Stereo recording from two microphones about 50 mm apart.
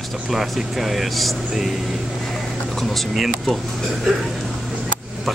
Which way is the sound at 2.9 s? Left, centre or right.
Centre.